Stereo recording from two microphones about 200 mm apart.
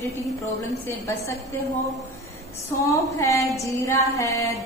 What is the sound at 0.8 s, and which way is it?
Speech, 15° left (ahead or behind).